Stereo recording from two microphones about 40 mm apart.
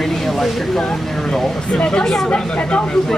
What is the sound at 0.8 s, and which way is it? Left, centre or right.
Speech, centre.